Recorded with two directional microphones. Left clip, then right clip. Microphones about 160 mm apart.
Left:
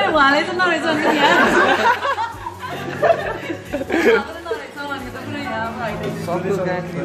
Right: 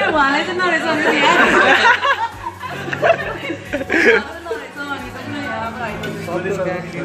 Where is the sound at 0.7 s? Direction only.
60° left (ahead or behind).